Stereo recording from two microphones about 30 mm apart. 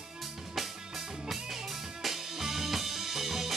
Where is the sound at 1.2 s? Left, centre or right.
Centre.